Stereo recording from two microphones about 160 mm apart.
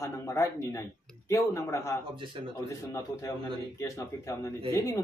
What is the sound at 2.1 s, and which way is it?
Speech, 30° right (ahead or behind).